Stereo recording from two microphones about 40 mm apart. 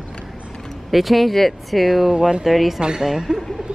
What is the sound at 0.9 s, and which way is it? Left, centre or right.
Speech, centre.